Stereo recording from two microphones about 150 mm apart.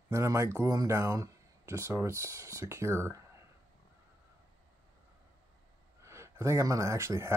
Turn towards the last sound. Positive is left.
turn(degrees=-20)  # may be behind; listen again after turning